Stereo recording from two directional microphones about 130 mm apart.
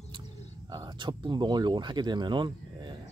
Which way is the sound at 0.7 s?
35° right (ahead or behind).